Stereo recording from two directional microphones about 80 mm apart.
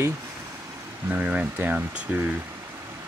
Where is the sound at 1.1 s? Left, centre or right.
Centre.